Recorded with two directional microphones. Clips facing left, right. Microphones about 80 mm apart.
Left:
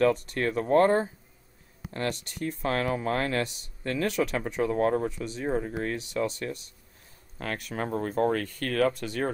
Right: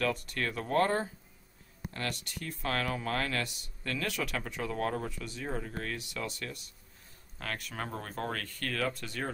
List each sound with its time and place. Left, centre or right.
0.0 s speech: left